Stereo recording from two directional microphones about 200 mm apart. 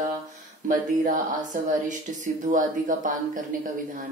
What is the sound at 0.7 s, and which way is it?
Speech, 40° right (ahead or behind).